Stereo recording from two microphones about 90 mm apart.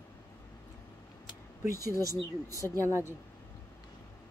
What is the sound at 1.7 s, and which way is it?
Speech, 40° right (ahead or behind).